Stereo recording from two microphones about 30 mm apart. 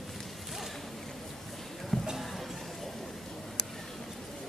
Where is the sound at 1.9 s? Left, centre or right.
Centre.